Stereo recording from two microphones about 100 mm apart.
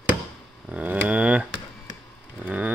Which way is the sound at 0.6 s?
15° right (ahead or behind).